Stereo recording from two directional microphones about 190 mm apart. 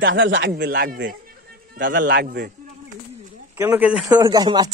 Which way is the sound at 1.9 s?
65° right (ahead or behind).